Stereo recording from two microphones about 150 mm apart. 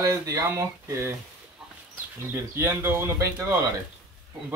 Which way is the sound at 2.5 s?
15° right (ahead or behind).